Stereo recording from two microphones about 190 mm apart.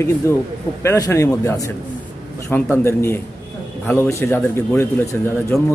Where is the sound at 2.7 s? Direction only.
15° left (ahead or behind).